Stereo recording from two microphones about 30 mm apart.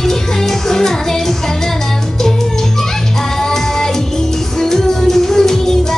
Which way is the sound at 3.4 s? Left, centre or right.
Centre.